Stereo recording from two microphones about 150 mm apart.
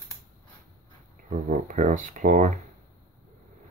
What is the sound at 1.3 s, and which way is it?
Speech, 55° right (ahead or behind).